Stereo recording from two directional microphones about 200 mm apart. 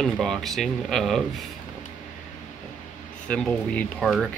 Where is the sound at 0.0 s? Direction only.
Centre (ahead or behind).